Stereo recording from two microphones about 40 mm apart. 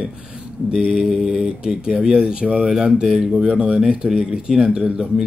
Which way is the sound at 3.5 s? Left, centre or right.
Right.